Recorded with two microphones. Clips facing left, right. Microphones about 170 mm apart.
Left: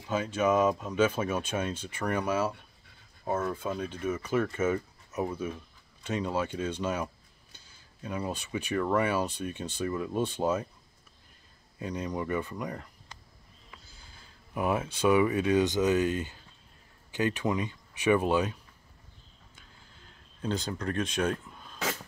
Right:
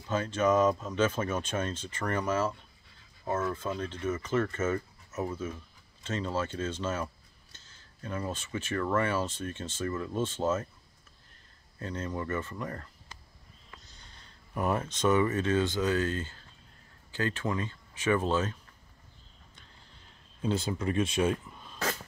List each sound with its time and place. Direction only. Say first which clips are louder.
0.1 s speech: even; 10° left (ahead or behind)
3.5 s speech: left 1 dB; 10° left (ahead or behind)
11.8 s speech: left 2 dB; 15° left (ahead or behind)
19.5 s a sound: left 1 dB; 5° left (ahead or behind)